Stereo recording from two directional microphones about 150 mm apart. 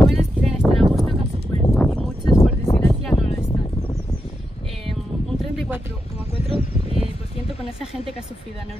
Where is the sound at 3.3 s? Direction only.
30° left (ahead or behind).